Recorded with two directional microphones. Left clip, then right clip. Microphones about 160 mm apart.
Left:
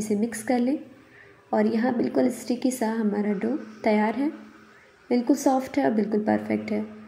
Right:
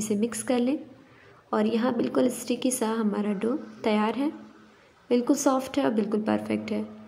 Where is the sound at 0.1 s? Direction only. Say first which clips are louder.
Left 1 dB; 20° right (ahead or behind).